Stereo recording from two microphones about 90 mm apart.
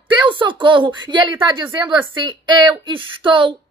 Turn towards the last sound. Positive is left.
turn(degrees=-65)  # may be behind; listen again after turning